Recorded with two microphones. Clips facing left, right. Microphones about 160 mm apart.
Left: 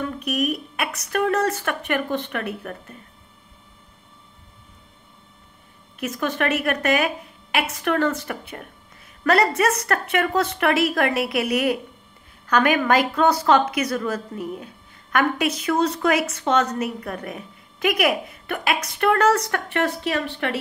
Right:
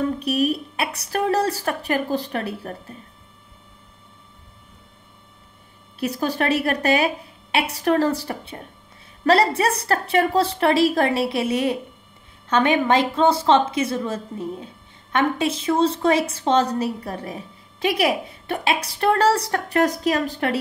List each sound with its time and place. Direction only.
0.0 s a woman's voice: 30° right (ahead or behind)
5.9 s a woman's voice: 35° right (ahead or behind)